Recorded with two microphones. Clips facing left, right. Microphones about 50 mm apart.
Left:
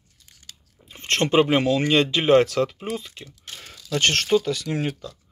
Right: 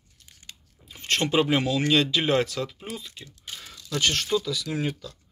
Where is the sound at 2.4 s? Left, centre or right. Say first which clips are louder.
Left 8 dB; left.